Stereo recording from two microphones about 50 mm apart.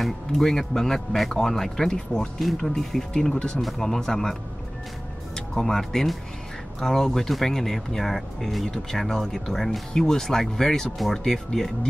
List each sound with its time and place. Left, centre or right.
0.0 s speech: centre